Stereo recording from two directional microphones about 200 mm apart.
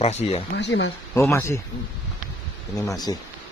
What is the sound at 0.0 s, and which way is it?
Speech, 30° left (ahead or behind).